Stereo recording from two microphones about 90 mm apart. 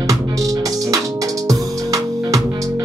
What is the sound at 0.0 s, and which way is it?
Music, 40° right (ahead or behind).